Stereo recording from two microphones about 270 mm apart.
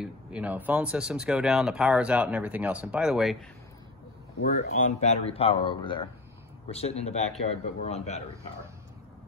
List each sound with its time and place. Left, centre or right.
0.0 s speech: centre
4.4 s speech: left